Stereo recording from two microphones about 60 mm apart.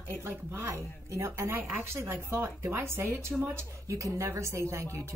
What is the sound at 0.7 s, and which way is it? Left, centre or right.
Speech, right.